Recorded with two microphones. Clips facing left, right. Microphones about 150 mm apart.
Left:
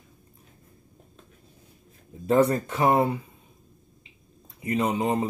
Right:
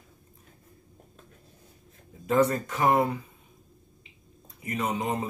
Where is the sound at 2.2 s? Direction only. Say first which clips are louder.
Left 3 dB; 30° left (ahead or behind).